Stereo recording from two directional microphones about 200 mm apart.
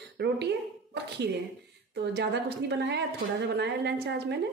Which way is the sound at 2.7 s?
60° right (ahead or behind).